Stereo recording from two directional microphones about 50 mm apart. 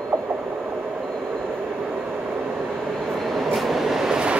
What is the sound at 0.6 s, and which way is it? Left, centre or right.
Train, right.